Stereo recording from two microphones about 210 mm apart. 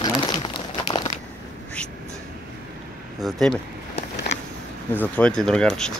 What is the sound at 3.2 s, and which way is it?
Speech, centre (ahead or behind).